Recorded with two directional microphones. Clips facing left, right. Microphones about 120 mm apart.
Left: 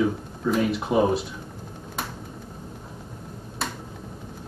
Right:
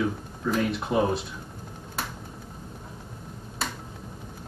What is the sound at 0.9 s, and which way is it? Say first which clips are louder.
Speech: left 3 dB; 10° left (ahead or behind).